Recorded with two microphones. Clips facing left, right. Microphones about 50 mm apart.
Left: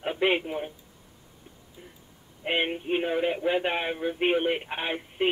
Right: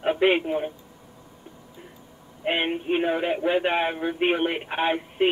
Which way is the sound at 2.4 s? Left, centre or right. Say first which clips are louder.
Right 3 dB; centre.